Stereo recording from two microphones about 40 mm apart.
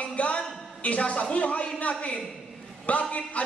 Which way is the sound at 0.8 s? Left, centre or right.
Left.